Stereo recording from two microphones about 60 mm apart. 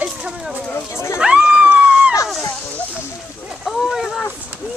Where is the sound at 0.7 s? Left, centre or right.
Left.